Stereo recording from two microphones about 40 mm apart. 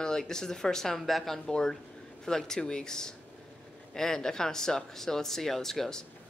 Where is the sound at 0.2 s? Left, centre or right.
Centre.